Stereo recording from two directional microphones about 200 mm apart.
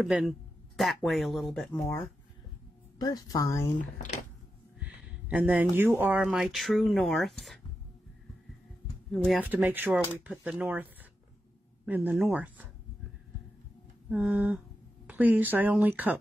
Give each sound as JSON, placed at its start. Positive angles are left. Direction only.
{"t": 0.0, "sound": "speech", "side_deg": 0}
{"t": 3.0, "sound": "speech", "side_deg": 20}
{"t": 3.7, "sound": "speech", "side_deg": 40}
{"t": 4.7, "sound": "a sound", "side_deg": -5}
{"t": 6.0, "sound": "speech", "side_deg": -5}
{"t": 9.1, "sound": "speech", "side_deg": 0}
{"t": 14.0, "sound": "speech", "side_deg": -5}